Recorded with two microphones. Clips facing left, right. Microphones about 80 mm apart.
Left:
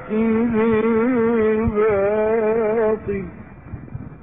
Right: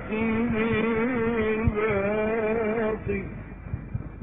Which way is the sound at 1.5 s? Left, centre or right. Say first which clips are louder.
Left 8 dB; left.